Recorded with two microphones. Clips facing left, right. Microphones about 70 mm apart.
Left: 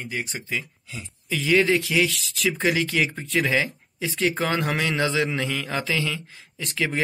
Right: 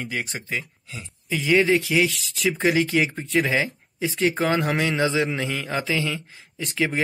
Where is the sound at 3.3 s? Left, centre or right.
Centre.